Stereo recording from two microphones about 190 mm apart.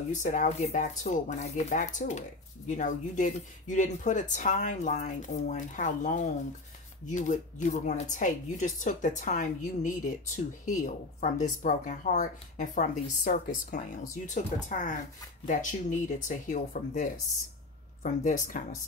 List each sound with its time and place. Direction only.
0.1 s speech: 40° left (ahead or behind)